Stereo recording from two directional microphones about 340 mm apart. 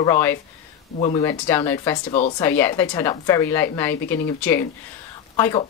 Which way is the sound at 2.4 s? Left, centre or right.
Centre.